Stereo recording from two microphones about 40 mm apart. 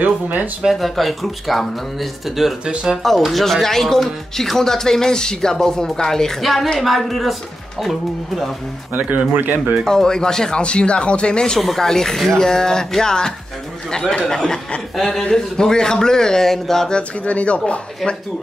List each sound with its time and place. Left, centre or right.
0.0 s speech: right
0.7 s speech: centre
2.6 s speech: right
3.2 s speech: centre
6.4 s speech: centre
9.3 s speech: right
9.8 s speech: centre
10.6 s speech: left
11.6 s speech: centre
15.0 s speech: centre
15.2 s speech: centre
16.9 s speech: left
18.0 s speech: centre